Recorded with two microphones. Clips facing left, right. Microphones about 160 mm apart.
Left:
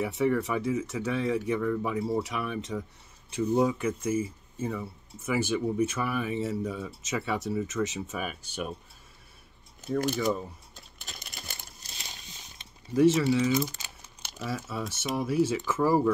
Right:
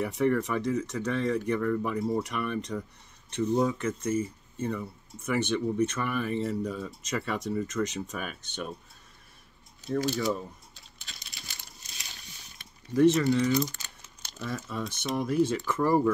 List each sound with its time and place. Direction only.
0.0 s speech: 5° left (ahead or behind)
9.9 s speech: 10° left (ahead or behind)
11.1 s a sound: 50° left (ahead or behind)
12.9 s speech: 5° left (ahead or behind)